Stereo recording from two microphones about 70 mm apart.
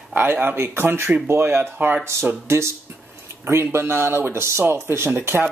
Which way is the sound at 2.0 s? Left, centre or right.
Right.